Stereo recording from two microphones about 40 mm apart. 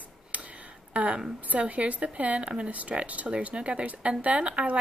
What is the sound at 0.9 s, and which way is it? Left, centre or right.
Speech, right.